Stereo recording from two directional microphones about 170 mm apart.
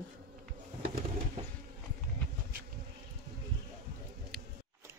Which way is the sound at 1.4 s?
35° right (ahead or behind).